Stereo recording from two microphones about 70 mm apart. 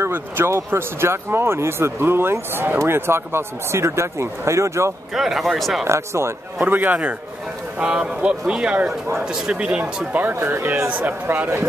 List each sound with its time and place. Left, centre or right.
0.0 s speech: right
5.1 s speech: centre
5.9 s speech: right
6.6 s a man's voice: right
10.2 s speech: right
10.9 s speech: right